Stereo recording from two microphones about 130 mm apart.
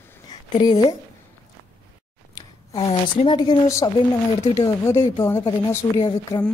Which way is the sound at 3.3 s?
35° left (ahead or behind).